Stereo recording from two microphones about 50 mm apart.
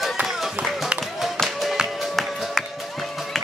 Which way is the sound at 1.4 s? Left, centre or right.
Centre.